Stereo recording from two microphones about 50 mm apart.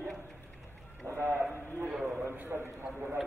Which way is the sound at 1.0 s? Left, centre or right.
Right.